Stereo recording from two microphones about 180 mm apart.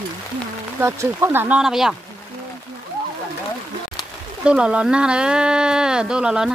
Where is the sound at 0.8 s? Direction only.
15° right (ahead or behind).